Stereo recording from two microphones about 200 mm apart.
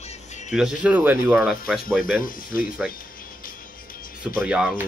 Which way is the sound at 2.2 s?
45° left (ahead or behind).